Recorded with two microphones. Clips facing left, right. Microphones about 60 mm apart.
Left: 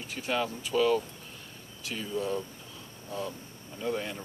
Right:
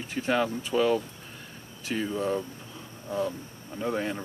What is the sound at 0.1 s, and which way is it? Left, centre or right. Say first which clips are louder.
Speech: right 5 dB; right.